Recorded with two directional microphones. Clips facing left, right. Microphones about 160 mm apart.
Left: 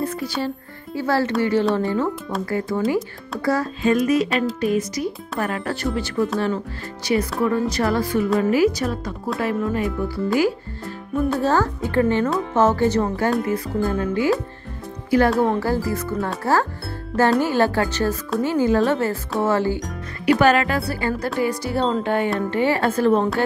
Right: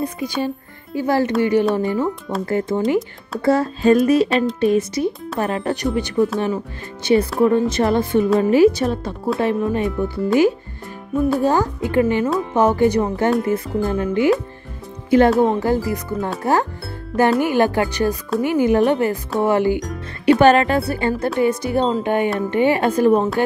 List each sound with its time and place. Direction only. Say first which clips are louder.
0.0 s speech: right 2 dB; 15° right (ahead or behind)
11.1 s speech: right 2 dB; 10° right (ahead or behind)